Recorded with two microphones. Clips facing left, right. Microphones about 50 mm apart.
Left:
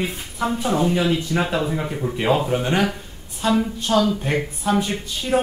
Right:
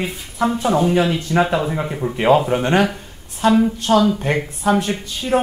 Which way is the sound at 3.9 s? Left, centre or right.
Right.